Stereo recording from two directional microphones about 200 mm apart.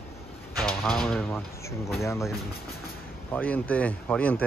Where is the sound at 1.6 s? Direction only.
15° left (ahead or behind).